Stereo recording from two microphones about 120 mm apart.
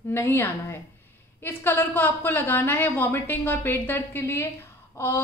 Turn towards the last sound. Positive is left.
turn(degrees=20)  # may be behind; listen again after turning